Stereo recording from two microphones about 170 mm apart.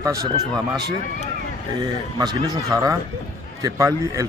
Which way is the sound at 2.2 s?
20° right (ahead or behind).